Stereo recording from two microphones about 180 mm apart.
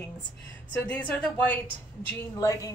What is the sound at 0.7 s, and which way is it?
Speech, 10° left (ahead or behind).